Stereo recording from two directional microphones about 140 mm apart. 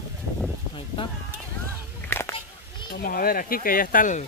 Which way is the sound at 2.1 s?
15° left (ahead or behind).